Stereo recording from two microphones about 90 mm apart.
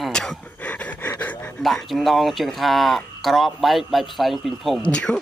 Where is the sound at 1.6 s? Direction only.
Centre (ahead or behind).